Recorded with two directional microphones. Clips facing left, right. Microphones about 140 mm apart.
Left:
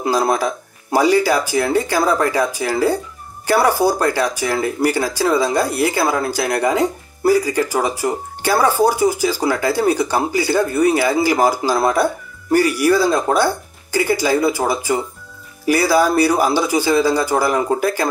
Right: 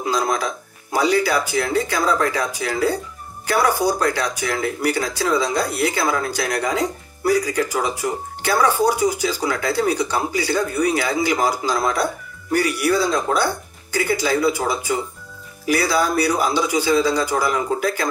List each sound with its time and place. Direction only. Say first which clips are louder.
0.0 s speech: left 4 dB; 30° left (ahead or behind)
16.0 s speech: left 4 dB; 35° left (ahead or behind)